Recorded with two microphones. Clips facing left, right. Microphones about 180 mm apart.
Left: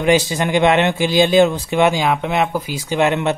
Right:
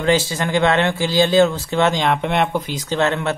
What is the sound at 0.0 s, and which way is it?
Speech, 15° left (ahead or behind).